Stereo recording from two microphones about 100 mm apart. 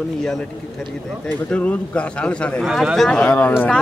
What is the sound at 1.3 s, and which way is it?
A man's voice, 15° left (ahead or behind).